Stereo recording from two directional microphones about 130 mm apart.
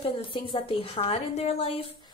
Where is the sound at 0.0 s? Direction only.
45° left (ahead or behind).